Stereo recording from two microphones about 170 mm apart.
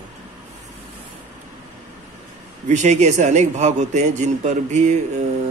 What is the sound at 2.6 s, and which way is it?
Speech, 45° right (ahead or behind).